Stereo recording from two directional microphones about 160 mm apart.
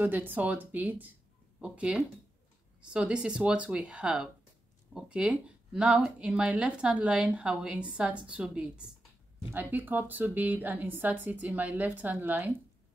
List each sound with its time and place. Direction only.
0.0 s speech: 10° right (ahead or behind)